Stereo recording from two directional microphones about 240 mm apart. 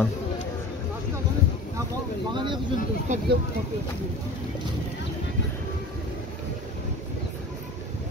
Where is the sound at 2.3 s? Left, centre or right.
Centre.